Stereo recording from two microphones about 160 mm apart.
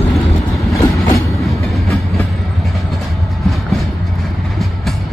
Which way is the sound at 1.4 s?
Centre (ahead or behind).